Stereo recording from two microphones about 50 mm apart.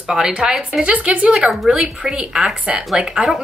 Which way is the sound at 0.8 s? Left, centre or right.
Right.